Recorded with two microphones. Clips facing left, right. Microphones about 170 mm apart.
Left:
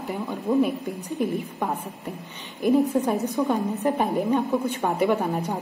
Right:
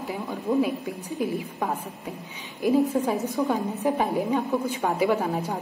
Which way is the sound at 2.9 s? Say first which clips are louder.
Left 1 dB; centre (ahead or behind).